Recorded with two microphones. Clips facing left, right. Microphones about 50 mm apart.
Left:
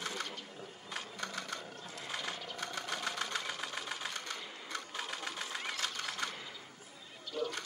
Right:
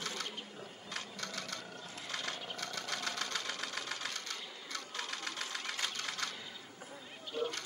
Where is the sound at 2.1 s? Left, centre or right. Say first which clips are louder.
Left 1 dB; centre.